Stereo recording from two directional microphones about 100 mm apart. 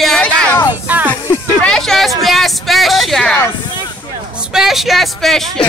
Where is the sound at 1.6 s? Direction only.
5° left (ahead or behind).